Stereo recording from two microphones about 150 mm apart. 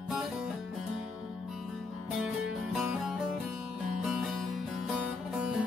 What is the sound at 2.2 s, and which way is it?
Music, 5° right (ahead or behind).